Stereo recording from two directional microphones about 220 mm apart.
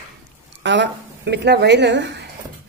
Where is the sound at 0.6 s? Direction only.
55° right (ahead or behind).